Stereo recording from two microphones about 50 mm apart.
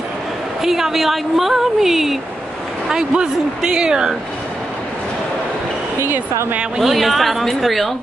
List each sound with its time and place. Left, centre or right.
0.6 s a woman's voice: centre
5.9 s speech: right
6.8 s a woman's voice: centre